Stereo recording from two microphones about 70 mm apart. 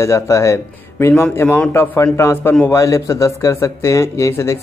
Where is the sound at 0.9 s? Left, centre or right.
Left.